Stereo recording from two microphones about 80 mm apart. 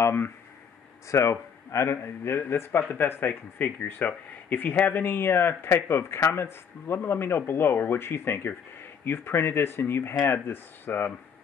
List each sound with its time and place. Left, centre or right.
0.0 s a man's voice: left